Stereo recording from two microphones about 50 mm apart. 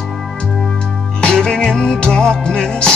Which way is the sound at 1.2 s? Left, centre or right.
Centre.